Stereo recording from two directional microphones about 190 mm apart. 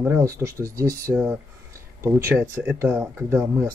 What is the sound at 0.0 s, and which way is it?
Speech, 15° right (ahead or behind).